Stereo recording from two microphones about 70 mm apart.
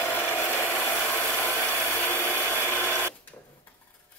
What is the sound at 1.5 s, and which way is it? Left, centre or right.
Wood, left.